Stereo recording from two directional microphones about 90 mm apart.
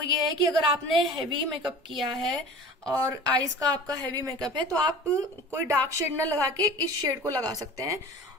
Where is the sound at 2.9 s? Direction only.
35° right (ahead or behind).